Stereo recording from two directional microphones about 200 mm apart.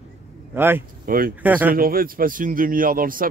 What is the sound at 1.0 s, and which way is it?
Speech, 45° right (ahead or behind).